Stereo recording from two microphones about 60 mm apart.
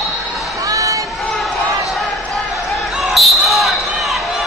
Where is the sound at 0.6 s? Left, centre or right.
Right.